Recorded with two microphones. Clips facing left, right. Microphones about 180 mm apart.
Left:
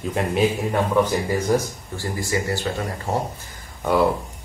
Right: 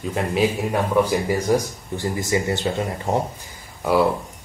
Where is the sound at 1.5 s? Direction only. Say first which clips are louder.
Right 1 dB; 20° right (ahead or behind).